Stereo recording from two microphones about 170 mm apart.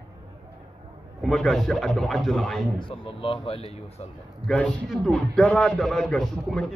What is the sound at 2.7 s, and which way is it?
Speech, 30° left (ahead or behind).